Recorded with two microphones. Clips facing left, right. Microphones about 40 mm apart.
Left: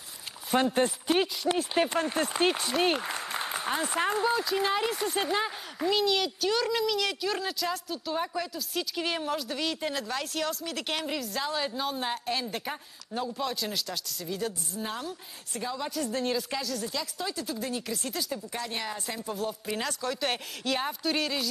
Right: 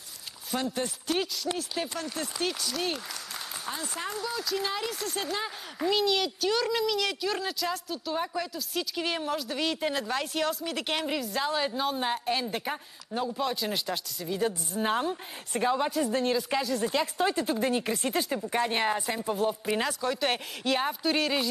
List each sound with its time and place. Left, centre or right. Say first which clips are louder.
0.6 s speech: left 6 dB; left
0.8 s speech: left 4 dB; centre
1.6 s speech: left 6 dB; left
4.4 s speech: left 4 dB; centre
5.8 s speech: even; centre
14.7 s speech: right 7 dB; right
15.9 s speech: right 3 dB; centre
16.4 s speech: right 5 dB; centre
16.8 s speech: right 7 dB; right
19.0 s speech: right 5 dB; centre